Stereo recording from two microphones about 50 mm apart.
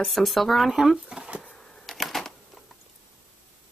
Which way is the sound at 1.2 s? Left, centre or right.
Right.